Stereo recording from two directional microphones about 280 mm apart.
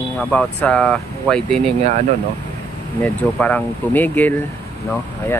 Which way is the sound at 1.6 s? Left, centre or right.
Right.